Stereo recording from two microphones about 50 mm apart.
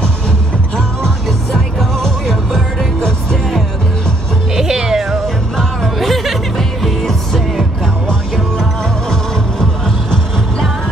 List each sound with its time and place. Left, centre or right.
0.7 s music: centre
1.8 s music: centre
4.6 s cat: centre
5.6 s music: centre